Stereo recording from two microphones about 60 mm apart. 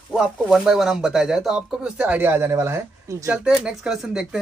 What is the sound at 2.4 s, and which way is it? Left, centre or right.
Speech, right.